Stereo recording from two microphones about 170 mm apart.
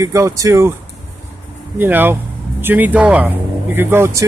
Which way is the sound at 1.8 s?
10° right (ahead or behind).